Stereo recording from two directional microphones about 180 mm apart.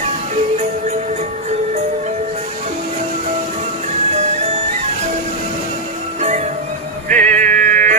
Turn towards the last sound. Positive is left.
turn(degrees=-45)  # may be behind; listen again after turning